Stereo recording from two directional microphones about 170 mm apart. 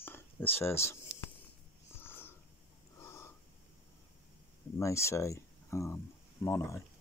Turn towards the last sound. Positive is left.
turn(degrees=15)  # may be behind; listen again after turning